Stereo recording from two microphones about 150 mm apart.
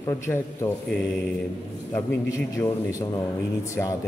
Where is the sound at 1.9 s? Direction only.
20° left (ahead or behind).